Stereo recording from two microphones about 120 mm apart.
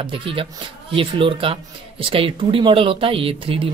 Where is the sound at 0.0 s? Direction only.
45° right (ahead or behind).